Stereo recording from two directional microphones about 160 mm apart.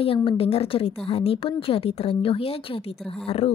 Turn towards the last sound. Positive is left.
turn(degrees=40)  # may be behind; listen again after turning